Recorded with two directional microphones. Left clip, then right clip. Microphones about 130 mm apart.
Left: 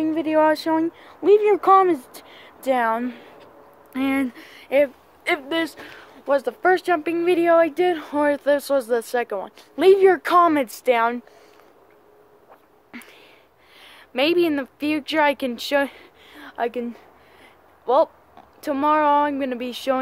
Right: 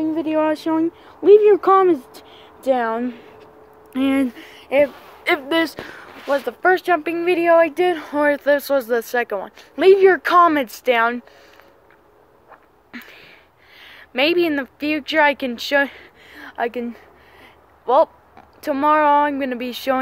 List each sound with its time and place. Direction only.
0.0 s speech: 25° left (ahead or behind)
1.2 s speech: 5° left (ahead or behind)
3.9 s speech: 5° right (ahead or behind)
4.8 s speech: 20° right (ahead or behind)
5.5 s speech: 35° right (ahead or behind)
6.2 s speech: 10° left (ahead or behind)
6.6 s speech: centre (ahead or behind)
12.9 s a sound: 5° left (ahead or behind)
18.6 s speech: centre (ahead or behind)